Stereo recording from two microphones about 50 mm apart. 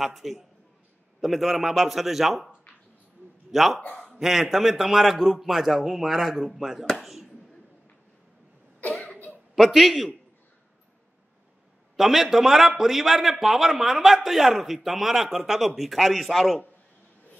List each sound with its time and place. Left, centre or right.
0.0 s a man's voice: centre
3.5 s a man's voice: centre
9.1 s a sound: left
9.6 s a man's voice: centre
12.0 s a man's voice: centre